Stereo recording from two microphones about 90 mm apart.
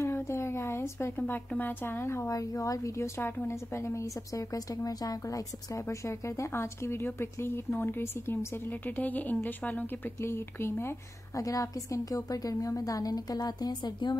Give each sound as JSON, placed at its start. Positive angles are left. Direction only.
{"t": 0.0, "sound": "a sound", "side_deg": 30}
{"t": 1.1, "sound": "a woman's voice", "side_deg": 20}
{"t": 3.2, "sound": "a woman's voice", "side_deg": 25}